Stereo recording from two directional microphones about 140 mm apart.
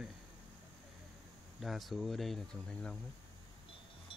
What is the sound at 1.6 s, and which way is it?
Speech, centre (ahead or behind).